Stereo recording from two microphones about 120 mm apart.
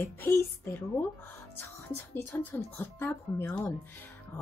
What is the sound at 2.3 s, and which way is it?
Speech, 20° left (ahead or behind).